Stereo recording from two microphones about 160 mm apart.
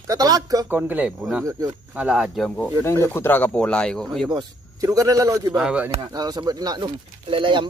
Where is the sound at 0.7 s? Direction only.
10° right (ahead or behind).